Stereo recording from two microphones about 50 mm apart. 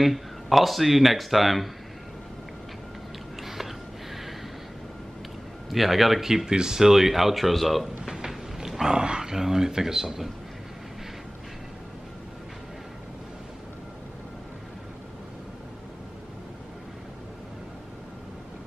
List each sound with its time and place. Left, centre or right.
0.0 s speech: centre
3.3 s a sound: centre
5.7 s speech: centre
8.1 s speech: centre